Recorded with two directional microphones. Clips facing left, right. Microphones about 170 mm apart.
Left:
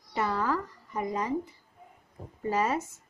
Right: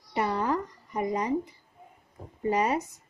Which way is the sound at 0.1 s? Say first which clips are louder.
Right 2 dB; 20° right (ahead or behind).